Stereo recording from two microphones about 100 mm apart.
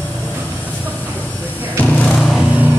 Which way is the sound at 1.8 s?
15° left (ahead or behind).